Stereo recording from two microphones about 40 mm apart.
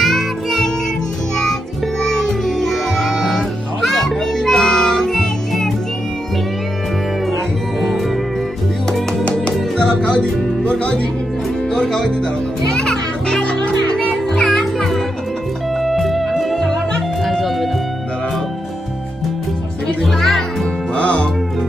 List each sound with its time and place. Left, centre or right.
0.0 s music: centre
7.8 s music: centre
9.8 s music: centre
11.7 s music: centre
14.6 s music: centre
20.0 s music: centre
20.9 s music: left